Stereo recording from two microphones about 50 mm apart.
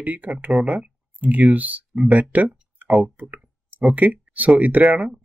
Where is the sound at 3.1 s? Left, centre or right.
Right.